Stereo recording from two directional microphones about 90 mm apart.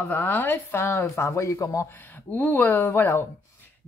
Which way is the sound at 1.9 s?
20° left (ahead or behind).